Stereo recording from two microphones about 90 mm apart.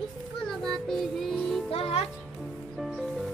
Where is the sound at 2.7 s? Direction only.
Centre (ahead or behind).